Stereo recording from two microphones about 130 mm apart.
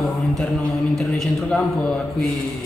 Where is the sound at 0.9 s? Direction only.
Centre (ahead or behind).